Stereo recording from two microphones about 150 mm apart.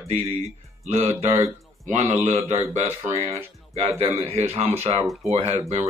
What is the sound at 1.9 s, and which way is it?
Speech, 45° right (ahead or behind).